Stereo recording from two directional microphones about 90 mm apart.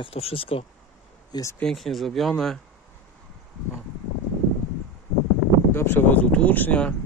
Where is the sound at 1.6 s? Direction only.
5° left (ahead or behind).